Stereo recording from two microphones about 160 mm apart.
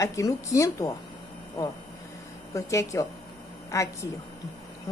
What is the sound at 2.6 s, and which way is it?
A woman's voice, 20° left (ahead or behind).